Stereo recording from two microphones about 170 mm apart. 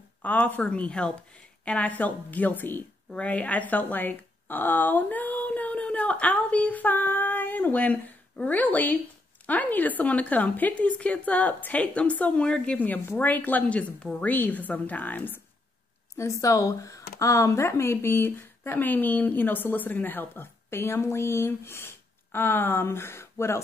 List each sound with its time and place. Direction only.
0.2 s speech: 10° left (ahead or behind)